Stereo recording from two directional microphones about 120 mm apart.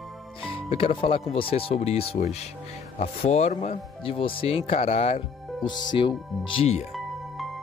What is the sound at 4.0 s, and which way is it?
Speech, 50° left (ahead or behind).